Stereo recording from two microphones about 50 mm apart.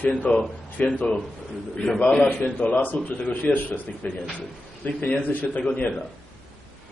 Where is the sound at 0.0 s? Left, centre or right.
Left.